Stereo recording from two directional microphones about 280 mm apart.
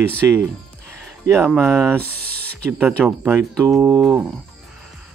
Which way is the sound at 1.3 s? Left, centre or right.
Centre.